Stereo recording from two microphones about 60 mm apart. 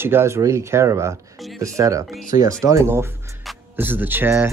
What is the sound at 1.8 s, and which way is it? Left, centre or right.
Speech, right.